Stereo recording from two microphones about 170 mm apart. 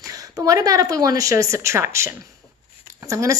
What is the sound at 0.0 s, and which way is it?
A woman's voice, 20° right (ahead or behind).